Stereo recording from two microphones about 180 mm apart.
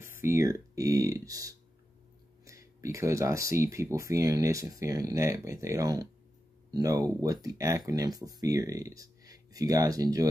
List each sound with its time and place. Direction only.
0.0 s speech: 15° right (ahead or behind)